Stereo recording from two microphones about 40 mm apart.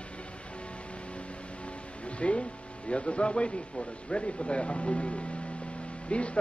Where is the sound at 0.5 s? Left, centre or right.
Left.